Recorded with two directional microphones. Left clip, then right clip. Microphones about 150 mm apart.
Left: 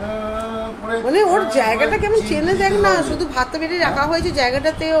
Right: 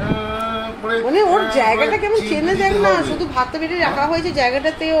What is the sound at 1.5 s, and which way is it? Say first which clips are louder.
A woman's voice: right 1 dB; centre (ahead or behind).